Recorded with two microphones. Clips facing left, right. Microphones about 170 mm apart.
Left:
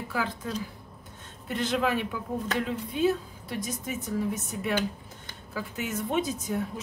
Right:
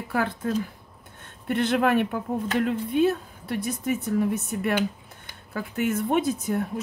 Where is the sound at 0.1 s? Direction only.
55° right (ahead or behind).